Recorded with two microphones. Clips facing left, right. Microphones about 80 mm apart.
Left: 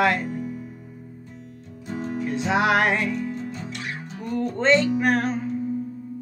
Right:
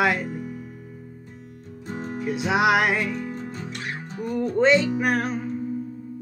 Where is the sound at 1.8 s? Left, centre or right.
Right.